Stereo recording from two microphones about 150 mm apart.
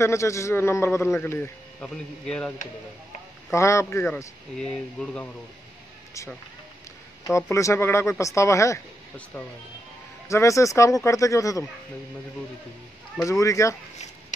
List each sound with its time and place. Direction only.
0.0 s a man's voice: 20° left (ahead or behind)
3.5 s a man's voice: 20° left (ahead or behind)
7.2 s speech: 20° left (ahead or behind)
10.2 s speech: 20° left (ahead or behind)
13.2 s speech: 20° left (ahead or behind)